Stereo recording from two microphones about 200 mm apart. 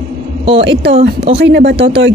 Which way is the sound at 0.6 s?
60° right (ahead or behind).